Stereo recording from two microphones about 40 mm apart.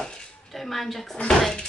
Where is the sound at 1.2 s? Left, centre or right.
Centre.